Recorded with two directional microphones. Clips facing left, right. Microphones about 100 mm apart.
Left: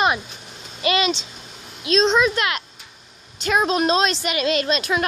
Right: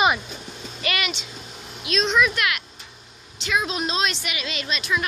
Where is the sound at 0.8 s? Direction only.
25° left (ahead or behind).